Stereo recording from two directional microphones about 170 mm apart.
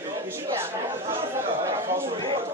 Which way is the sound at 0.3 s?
15° right (ahead or behind).